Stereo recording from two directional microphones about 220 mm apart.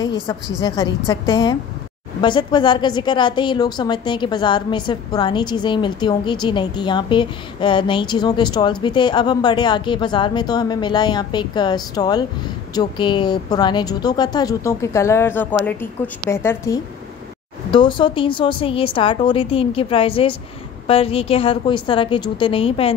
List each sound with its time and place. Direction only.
0.0 s a woman's voice: 20° left (ahead or behind)